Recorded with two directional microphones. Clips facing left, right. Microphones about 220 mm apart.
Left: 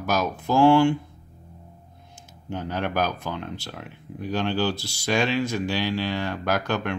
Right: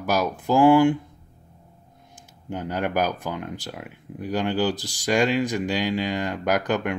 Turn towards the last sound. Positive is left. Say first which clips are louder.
# right 2 dB
turn(degrees=-15)  # may be behind; listen again after turning